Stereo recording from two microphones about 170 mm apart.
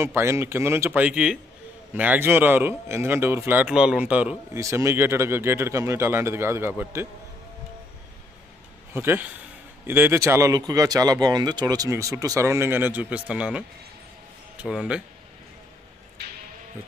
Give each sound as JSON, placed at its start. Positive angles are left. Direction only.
{"t": 0.0, "sound": "speech", "side_deg": -15}
{"t": 8.9, "sound": "speech", "side_deg": -10}